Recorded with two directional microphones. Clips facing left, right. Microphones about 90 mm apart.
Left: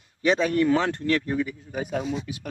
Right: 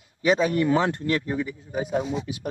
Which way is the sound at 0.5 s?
20° right (ahead or behind).